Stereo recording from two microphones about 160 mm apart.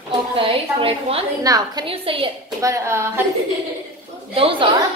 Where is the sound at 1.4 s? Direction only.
20° right (ahead or behind).